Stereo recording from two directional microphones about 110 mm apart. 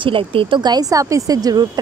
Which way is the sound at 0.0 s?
55° right (ahead or behind).